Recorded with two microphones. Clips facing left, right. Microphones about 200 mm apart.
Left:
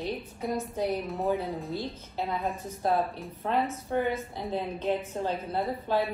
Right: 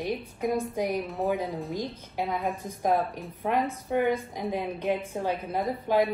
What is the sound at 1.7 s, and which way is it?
A woman's voice, 15° right (ahead or behind).